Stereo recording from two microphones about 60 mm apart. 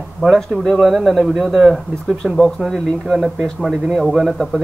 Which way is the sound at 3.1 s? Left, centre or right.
Centre.